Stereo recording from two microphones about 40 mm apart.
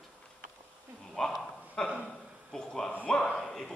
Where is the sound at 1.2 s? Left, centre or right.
Centre.